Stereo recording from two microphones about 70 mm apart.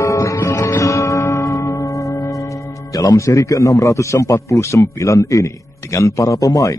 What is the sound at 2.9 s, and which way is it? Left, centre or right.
Speech, left.